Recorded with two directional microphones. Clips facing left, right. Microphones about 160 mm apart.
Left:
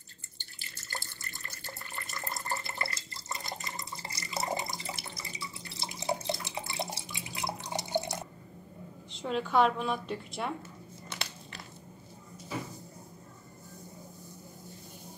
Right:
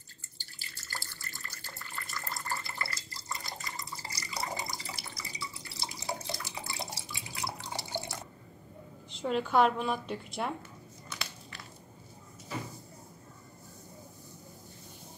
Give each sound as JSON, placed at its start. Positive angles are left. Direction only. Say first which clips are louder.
{"t": 0.9, "sound": "water tap", "louder": "left 2 dB", "side_deg": 20}
{"t": 9.1, "sound": "a woman's voice", "louder": "right 1 dB", "side_deg": 0}
{"t": 11.1, "sound": "crumpling", "louder": "left 1 dB", "side_deg": 30}